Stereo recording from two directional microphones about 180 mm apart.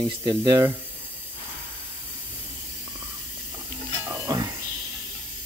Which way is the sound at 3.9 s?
15° right (ahead or behind).